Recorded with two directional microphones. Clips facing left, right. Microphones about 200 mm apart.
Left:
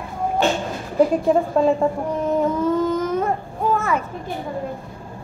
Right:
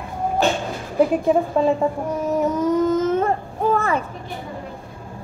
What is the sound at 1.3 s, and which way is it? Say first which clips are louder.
A woman's voice: left 1 dB; 5° right (ahead or behind).